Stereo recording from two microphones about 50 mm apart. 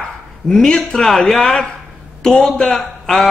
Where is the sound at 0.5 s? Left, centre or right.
Centre.